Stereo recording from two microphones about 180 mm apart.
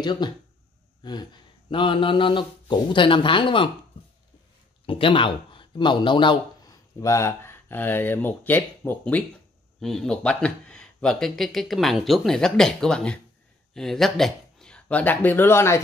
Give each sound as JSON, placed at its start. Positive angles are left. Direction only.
{"t": 0.0, "sound": "speech", "side_deg": 25}
{"t": 4.8, "sound": "speech", "side_deg": 30}